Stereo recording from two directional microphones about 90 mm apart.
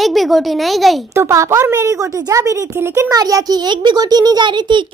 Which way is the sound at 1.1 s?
30° right (ahead or behind).